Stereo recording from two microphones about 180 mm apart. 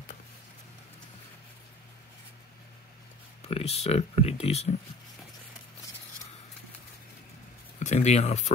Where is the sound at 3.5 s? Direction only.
35° left (ahead or behind).